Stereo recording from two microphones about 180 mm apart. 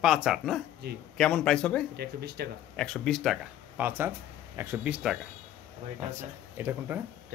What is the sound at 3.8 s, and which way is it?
Speech, 10° right (ahead or behind).